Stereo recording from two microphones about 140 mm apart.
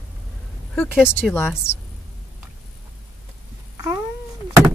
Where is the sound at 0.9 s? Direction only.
5° right (ahead or behind).